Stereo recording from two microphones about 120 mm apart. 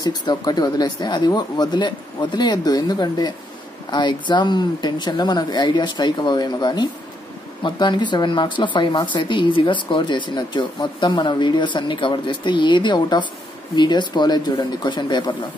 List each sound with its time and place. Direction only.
0.0 s speech: 35° left (ahead or behind)